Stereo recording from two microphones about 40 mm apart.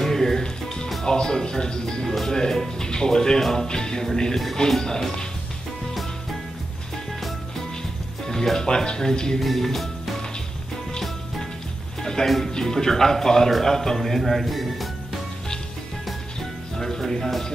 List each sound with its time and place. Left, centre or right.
0.0 s music: centre
1.0 s speech: centre
2.0 s speech: centre
8.3 s speech: centre
9.4 s music: centre
12.0 s a man's voice: centre
16.3 s music: centre